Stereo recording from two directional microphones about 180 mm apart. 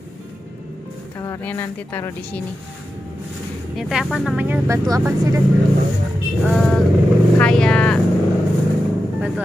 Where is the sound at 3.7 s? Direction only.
Centre (ahead or behind); by 5.4 s 15° right (ahead or behind).